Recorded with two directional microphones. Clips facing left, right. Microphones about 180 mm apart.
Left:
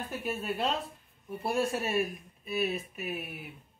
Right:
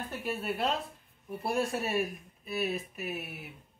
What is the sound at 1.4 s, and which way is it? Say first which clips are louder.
Speech: left 1 dB; centre (ahead or behind).